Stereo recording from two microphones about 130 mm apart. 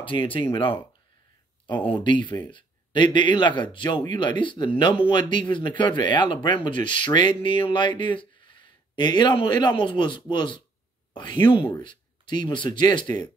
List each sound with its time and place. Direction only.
0.0 s speech: 40° left (ahead or behind)
1.9 s speech: 40° left (ahead or behind)